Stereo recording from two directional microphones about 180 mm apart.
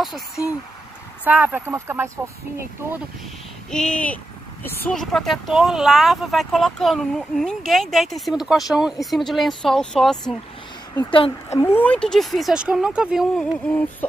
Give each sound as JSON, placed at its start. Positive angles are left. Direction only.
{"t": 1.2, "sound": "speech", "side_deg": -10}
{"t": 3.7, "sound": "speech", "side_deg": 5}
{"t": 11.1, "sound": "speech", "side_deg": 30}
{"t": 11.5, "sound": "speech", "side_deg": 15}